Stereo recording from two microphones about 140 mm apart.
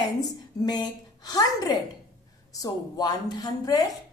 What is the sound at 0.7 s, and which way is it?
A woman's voice, 30° left (ahead or behind).